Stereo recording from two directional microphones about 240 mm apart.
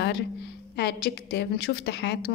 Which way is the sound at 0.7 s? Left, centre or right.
Left.